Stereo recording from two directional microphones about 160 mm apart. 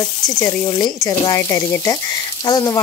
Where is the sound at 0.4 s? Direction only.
25° left (ahead or behind).